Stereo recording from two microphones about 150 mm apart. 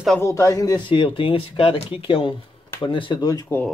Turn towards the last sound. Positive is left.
turn(degrees=25)  # may be behind; listen again after turning